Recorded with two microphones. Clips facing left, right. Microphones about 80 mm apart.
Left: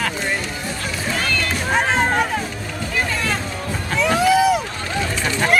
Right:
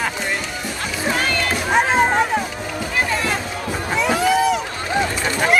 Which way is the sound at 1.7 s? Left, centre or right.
Centre.